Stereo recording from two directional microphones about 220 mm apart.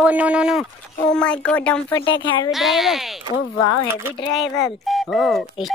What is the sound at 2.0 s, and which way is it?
Speech, 20° left (ahead or behind).